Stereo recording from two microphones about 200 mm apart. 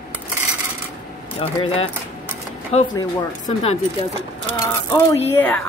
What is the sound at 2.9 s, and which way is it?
Speech, 20° left (ahead or behind).